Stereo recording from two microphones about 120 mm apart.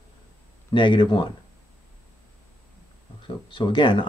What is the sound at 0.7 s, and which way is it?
Speech, 40° left (ahead or behind).